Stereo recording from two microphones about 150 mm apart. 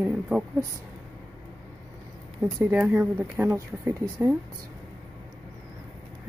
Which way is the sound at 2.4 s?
10° right (ahead or behind).